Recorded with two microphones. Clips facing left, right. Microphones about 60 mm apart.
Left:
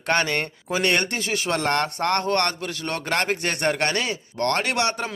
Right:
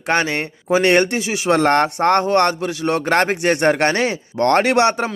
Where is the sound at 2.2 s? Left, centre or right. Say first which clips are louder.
Right 7 dB; right.